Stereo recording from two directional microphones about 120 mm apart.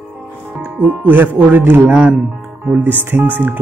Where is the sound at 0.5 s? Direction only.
10° right (ahead or behind).